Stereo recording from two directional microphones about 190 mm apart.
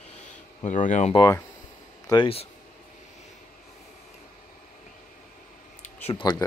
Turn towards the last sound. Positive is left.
turn(degrees=25)  # may be behind; listen again after turning